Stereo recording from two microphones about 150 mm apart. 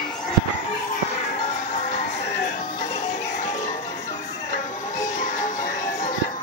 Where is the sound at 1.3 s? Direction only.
55° left (ahead or behind).